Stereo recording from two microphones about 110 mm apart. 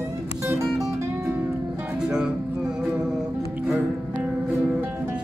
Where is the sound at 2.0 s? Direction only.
5° right (ahead or behind).